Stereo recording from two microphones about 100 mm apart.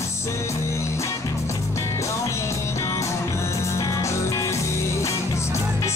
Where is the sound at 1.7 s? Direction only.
30° left (ahead or behind).